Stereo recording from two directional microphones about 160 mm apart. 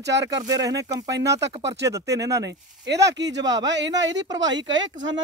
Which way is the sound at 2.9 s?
90° right.